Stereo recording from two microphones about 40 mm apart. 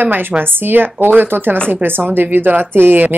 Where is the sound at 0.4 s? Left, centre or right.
Right.